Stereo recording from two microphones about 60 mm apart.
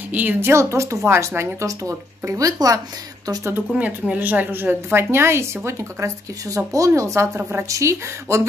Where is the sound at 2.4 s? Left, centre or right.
Right.